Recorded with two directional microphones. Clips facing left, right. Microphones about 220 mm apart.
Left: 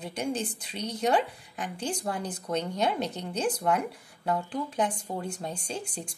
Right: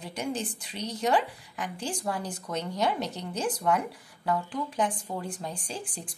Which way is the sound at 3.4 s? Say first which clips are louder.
Left 1 dB; 20° left (ahead or behind).